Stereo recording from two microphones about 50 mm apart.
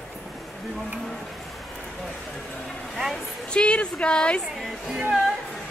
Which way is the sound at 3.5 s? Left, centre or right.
Left.